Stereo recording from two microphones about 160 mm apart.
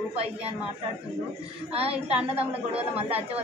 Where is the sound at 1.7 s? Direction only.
40° right (ahead or behind).